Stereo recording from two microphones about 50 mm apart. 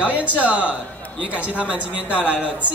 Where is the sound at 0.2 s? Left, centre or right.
Right.